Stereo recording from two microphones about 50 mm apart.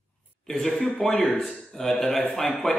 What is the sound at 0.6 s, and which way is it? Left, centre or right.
A man's voice, centre.